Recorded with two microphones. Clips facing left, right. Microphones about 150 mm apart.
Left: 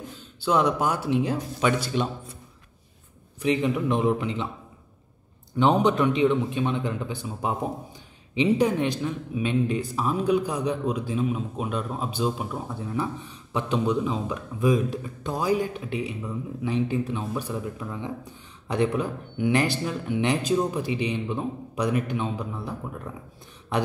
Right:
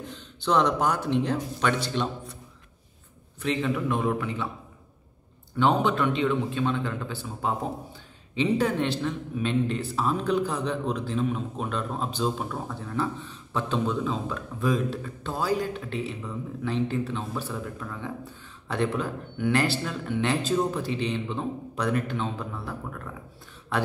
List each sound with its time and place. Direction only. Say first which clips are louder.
0.1 s a man's voice: left 1 dB; 10° left (ahead or behind)
3.4 s a man's voice: left 3 dB; 20° left (ahead or behind)
5.6 s a man's voice: left 2 dB; 20° left (ahead or behind)